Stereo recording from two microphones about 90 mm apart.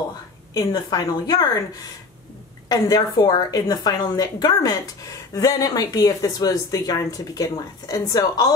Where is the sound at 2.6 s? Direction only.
45° left (ahead or behind).